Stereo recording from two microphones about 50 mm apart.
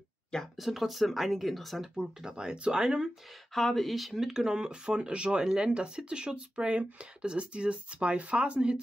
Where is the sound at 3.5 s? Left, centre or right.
Centre.